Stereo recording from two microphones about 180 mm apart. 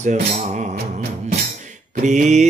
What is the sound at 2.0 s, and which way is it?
Mantra, 40° right (ahead or behind).